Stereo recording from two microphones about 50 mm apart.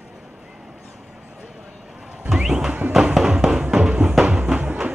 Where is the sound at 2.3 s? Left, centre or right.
Centre.